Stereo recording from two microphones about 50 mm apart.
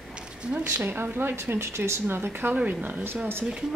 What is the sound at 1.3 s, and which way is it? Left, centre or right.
Speech, right.